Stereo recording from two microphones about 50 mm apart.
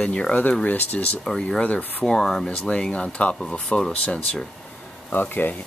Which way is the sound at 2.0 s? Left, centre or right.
Centre.